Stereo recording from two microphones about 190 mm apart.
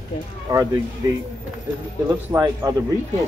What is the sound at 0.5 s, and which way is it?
Speech, 15° right (ahead or behind).